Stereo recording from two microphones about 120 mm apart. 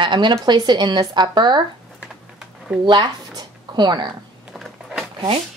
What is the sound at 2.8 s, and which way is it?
Speech, 40° right (ahead or behind).